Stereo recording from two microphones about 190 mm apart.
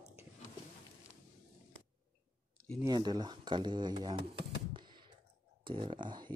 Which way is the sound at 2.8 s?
20° right (ahead or behind).